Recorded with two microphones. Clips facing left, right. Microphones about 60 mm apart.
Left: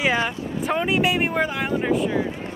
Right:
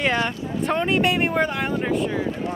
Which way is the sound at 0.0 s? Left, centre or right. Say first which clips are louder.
Even; centre.